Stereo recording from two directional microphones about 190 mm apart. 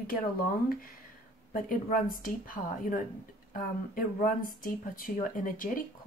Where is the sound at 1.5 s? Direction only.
50° left (ahead or behind).